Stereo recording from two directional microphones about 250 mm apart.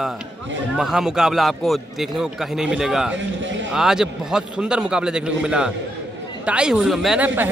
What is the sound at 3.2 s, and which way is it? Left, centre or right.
Speech, right.